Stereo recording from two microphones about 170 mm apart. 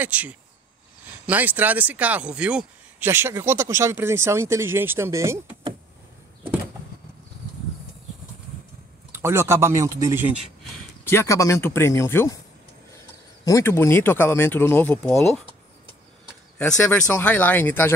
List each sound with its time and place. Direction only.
0.0 s speech: 10° right (ahead or behind)
9.1 s speech: 15° right (ahead or behind)
11.1 s speech: 15° left (ahead or behind)
13.5 s speech: 15° left (ahead or behind)
16.5 s speech: 5° left (ahead or behind)